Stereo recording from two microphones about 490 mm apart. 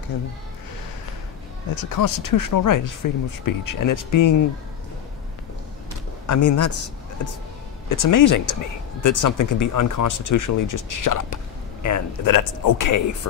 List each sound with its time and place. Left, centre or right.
1.8 s speech: left
6.2 s speech: left